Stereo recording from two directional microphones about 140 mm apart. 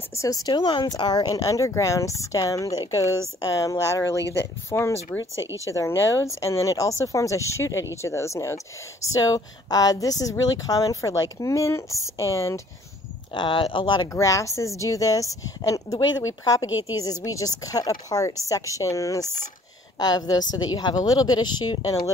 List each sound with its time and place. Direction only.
0.1 s speech: 25° left (ahead or behind)
13.3 s speech: 35° left (ahead or behind)
14.1 s speech: 20° left (ahead or behind)